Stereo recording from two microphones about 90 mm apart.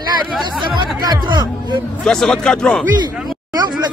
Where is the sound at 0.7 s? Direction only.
55° right (ahead or behind).